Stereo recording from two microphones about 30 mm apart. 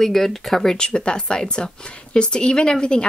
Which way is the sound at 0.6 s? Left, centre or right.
Left.